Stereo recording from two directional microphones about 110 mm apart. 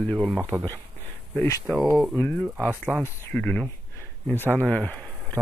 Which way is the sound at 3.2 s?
15° left (ahead or behind).